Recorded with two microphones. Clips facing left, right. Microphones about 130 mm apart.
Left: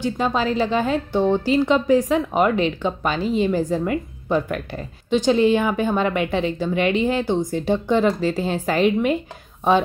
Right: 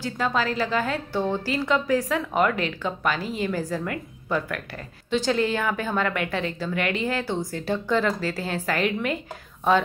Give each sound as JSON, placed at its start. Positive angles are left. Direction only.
{"t": 0.0, "sound": "a woman's voice", "side_deg": 20}